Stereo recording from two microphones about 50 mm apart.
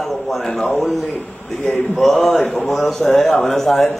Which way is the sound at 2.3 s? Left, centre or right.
Centre.